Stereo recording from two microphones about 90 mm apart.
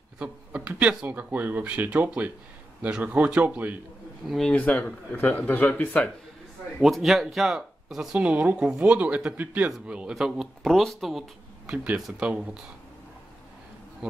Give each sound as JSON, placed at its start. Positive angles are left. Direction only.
{"t": 0.2, "sound": "speech", "side_deg": -15}
{"t": 4.5, "sound": "speech", "side_deg": 15}
{"t": 6.8, "sound": "speech", "side_deg": 0}
{"t": 8.2, "sound": "speech", "side_deg": -15}